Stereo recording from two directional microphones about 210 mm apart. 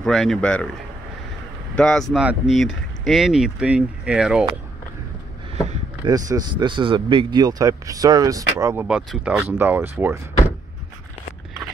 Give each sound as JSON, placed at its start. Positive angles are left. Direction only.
{"t": 0.0, "sound": "speech", "side_deg": 0}
{"t": 1.8, "sound": "speech", "side_deg": 0}
{"t": 6.0, "sound": "speech", "side_deg": -20}